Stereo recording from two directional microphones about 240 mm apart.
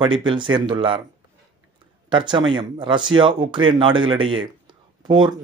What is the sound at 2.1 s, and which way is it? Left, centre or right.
Speech, centre.